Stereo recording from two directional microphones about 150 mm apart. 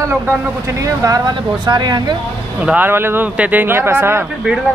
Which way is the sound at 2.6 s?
10° right (ahead or behind).